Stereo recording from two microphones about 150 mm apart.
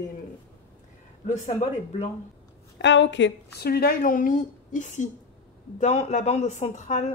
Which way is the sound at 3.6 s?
90° left.